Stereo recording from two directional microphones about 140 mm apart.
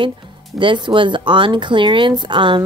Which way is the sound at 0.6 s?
35° right (ahead or behind).